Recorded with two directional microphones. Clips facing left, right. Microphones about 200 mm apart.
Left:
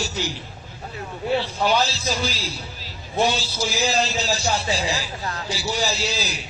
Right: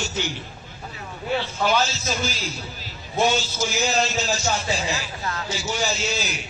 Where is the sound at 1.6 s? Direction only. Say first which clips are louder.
Even; 35° left (ahead or behind).